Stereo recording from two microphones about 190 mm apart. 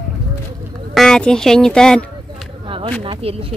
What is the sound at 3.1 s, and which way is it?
Speech, 30° right (ahead or behind).